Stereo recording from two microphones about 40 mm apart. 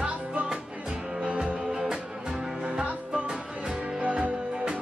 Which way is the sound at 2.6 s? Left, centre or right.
Right.